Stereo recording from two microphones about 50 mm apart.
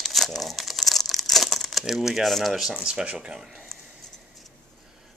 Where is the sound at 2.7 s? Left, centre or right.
Centre.